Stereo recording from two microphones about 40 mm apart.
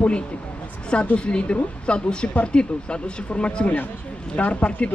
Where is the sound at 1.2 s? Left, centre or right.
Left.